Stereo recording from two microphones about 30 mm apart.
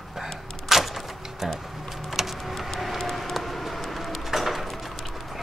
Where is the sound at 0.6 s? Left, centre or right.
Centre.